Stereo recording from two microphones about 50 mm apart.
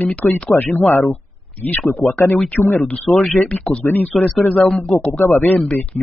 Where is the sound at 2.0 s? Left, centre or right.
Left.